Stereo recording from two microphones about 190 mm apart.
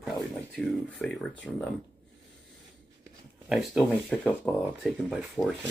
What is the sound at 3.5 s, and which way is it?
Speech, centre (ahead or behind).